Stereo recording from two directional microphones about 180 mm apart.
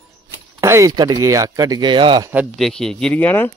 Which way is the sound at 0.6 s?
15° right (ahead or behind).